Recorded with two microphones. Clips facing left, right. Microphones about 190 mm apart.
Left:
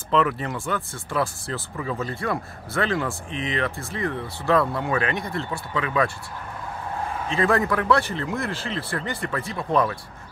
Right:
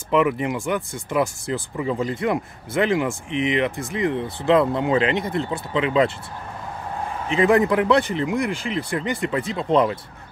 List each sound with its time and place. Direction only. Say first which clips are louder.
0.1 s speech: right 3 dB; 15° right (ahead or behind)
7.2 s speech: right 5 dB; 20° right (ahead or behind)